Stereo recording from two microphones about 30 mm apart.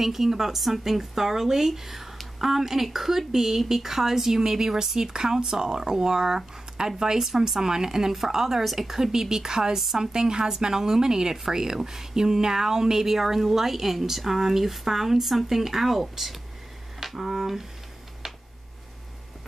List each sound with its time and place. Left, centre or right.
0.0 s speech: centre
17.0 s finger snapping: centre
18.2 s a sound: centre